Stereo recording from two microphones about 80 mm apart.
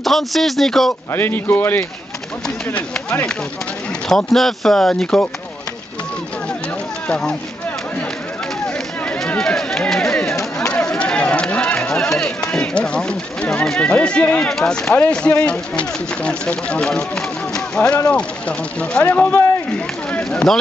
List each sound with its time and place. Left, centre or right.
0.0 s speech: centre
1.1 s speech: left
2.4 s speech: centre
7.1 s speech: centre
8.6 s run: centre
10.6 s a sound: centre
13.7 s speech: centre
20.2 s speech: centre